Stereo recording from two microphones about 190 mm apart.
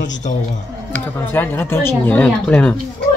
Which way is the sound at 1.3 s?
10° left (ahead or behind).